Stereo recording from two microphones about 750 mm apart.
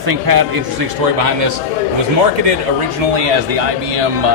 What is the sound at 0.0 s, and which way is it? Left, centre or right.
Speech, right.